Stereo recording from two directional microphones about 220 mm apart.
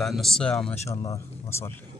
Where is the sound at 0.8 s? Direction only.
20° left (ahead or behind).